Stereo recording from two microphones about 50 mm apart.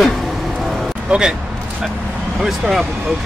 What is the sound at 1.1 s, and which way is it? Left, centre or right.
Speech, centre.